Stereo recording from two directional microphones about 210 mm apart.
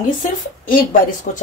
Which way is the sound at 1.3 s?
35° left (ahead or behind).